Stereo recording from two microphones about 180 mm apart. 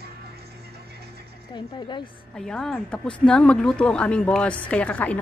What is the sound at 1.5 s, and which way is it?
Speech, 25° left (ahead or behind).